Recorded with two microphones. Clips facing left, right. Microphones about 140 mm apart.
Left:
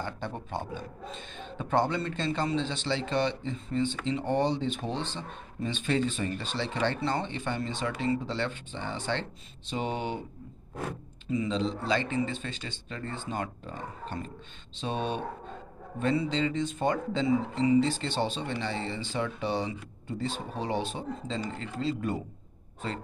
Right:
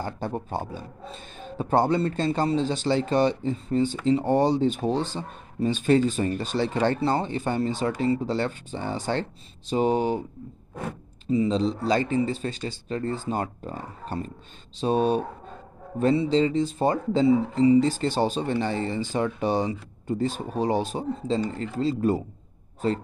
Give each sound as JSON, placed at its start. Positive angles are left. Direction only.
{"t": 0.0, "sound": "speech", "side_deg": -40}
{"t": 11.2, "sound": "speech", "side_deg": -35}
{"t": 16.3, "sound": "speech", "side_deg": -35}